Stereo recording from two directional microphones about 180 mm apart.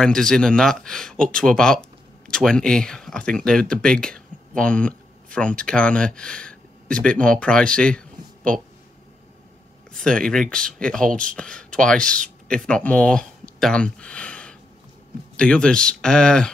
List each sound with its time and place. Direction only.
0.0 s speech: 5° left (ahead or behind)
9.9 s speech: 5° left (ahead or behind)